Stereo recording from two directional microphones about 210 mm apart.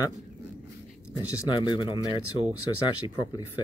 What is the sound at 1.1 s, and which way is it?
Speech, 20° left (ahead or behind).